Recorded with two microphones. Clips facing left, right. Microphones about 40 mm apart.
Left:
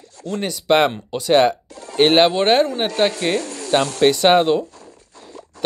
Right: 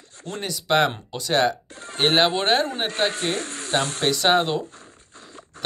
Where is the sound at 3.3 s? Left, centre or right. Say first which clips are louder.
Left 6 dB; right.